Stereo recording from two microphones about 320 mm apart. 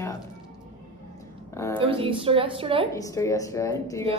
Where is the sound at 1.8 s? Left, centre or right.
Centre.